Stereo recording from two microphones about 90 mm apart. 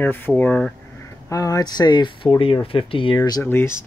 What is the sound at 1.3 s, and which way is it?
Speech, 40° left (ahead or behind).